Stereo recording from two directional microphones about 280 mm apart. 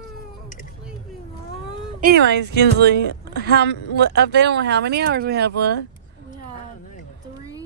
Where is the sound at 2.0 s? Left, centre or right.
Right.